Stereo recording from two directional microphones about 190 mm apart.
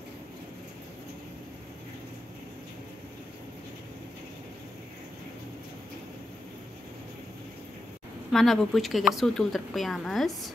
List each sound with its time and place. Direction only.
8.3 s a woman's voice: centre (ahead or behind)